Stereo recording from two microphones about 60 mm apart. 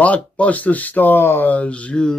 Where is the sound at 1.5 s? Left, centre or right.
Left.